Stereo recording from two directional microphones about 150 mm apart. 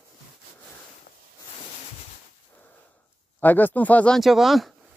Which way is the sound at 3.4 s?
10° left (ahead or behind).